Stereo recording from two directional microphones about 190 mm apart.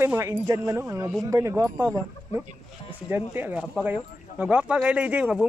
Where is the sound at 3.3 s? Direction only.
10° right (ahead or behind).